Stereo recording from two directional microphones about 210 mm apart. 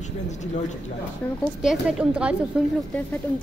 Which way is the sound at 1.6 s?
5° right (ahead or behind).